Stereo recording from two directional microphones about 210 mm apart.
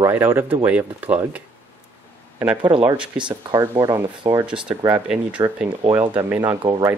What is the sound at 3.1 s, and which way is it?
Speech, 20° right (ahead or behind).